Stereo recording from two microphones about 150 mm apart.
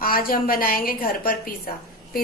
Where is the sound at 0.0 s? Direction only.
75° left (ahead or behind).